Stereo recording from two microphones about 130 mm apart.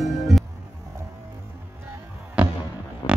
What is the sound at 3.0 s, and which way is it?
Music, 35° left (ahead or behind).